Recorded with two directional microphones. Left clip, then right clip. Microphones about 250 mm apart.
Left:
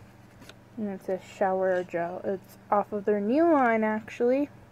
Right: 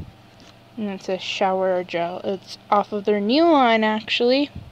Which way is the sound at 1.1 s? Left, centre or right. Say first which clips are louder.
Right 6 dB; right.